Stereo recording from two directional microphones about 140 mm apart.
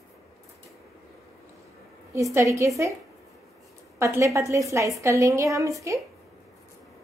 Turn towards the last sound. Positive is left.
turn(degrees=-25)  # may be behind; listen again after turning